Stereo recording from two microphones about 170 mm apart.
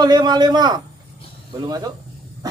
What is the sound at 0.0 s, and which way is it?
A man's voice, 25° right (ahead or behind).